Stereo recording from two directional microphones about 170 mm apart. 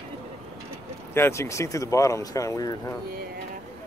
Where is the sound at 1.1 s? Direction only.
15° left (ahead or behind).